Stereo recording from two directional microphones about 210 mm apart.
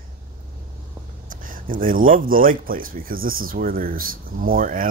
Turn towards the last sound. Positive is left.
turn(degrees=-40)  # may be behind; listen again after turning